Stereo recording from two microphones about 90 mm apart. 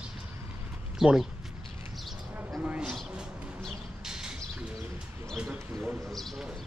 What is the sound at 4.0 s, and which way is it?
Bird, 5° right (ahead or behind).